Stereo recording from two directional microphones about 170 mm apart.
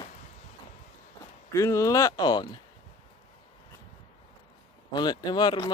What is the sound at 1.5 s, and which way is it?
Speech, 20° left (ahead or behind).